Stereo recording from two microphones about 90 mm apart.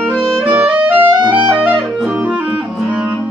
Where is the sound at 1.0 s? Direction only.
50° right (ahead or behind).